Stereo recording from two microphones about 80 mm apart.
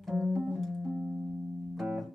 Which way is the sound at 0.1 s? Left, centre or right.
Centre.